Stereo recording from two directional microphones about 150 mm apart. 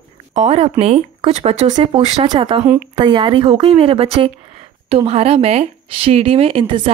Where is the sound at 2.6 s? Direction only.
10° right (ahead or behind).